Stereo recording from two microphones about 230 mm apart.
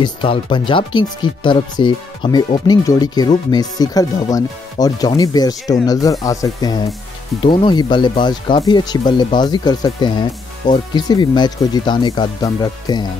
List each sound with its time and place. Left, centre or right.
0.0 s speech: left